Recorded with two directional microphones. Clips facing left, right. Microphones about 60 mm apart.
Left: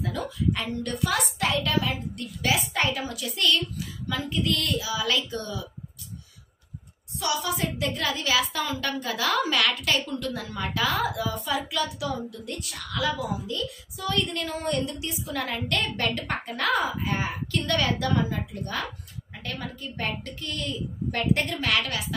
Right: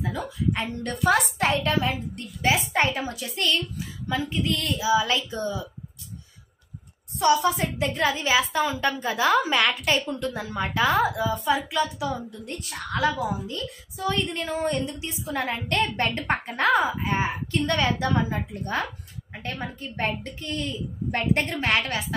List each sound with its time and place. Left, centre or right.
0.0 s a woman's voice: right
1.1 s a woman's voice: right
7.2 s a woman's voice: right